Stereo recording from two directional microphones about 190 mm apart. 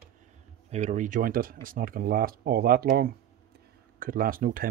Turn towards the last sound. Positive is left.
turn(degrees=-50)  # may be behind; listen again after turning